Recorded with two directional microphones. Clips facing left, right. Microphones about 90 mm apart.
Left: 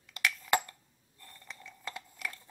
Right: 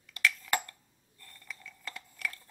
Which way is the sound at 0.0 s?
25° left (ahead or behind).